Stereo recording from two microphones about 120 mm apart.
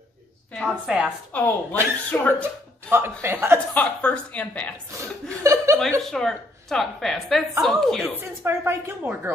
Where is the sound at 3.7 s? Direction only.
10° left (ahead or behind).